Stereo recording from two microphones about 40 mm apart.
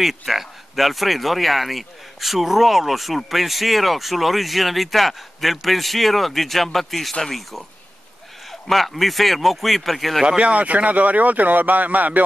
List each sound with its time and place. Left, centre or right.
0.0 s speech: centre
8.5 s speech: centre
10.2 s speech: right